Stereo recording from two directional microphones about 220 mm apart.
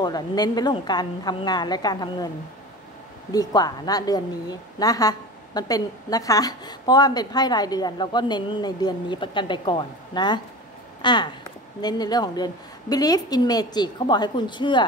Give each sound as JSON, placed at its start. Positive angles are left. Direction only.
{"t": 0.0, "sound": "a woman's voice", "side_deg": 20}
{"t": 3.3, "sound": "a woman's voice", "side_deg": 15}